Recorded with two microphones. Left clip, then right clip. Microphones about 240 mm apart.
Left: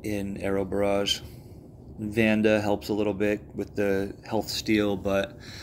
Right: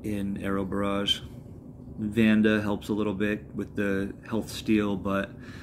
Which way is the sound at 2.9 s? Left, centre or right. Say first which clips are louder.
Left 3 dB; centre.